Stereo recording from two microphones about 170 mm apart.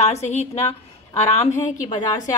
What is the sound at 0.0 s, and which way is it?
A woman's voice, 40° left (ahead or behind).